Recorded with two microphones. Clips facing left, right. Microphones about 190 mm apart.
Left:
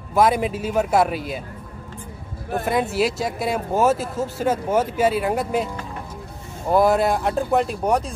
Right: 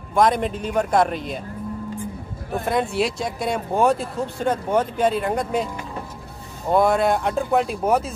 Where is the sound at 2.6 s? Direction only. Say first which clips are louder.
Left 1 dB; centre (ahead or behind).